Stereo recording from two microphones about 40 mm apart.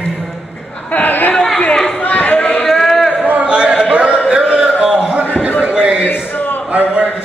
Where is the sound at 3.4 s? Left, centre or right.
Right.